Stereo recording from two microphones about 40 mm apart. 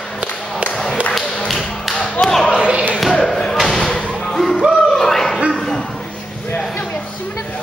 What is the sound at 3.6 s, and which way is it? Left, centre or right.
Thump, centre.